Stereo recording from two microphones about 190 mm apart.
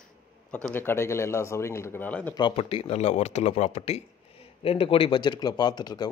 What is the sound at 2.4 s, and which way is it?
Speech, 30° left (ahead or behind).